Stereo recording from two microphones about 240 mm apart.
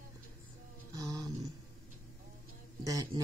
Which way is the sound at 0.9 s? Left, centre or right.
Centre.